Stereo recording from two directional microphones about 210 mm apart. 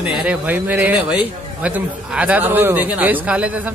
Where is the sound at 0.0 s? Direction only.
5° right (ahead or behind).